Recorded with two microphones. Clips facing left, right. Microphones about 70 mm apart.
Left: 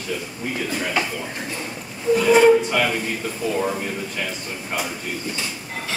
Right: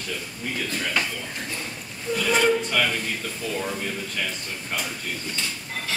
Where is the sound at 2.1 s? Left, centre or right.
Centre.